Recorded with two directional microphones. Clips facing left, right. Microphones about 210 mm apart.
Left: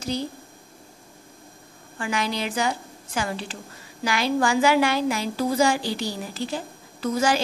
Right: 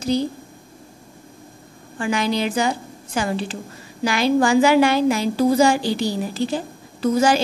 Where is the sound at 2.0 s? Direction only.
25° right (ahead or behind).